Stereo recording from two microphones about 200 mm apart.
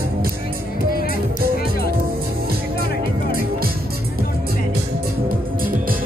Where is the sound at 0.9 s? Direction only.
45° left (ahead or behind).